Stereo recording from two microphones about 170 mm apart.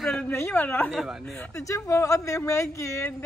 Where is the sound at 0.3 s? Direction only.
15° left (ahead or behind).